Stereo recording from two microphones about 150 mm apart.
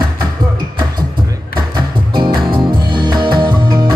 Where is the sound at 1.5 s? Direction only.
30° right (ahead or behind).